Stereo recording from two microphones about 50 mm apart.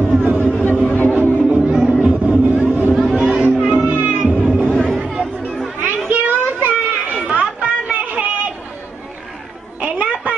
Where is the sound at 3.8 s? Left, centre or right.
Right.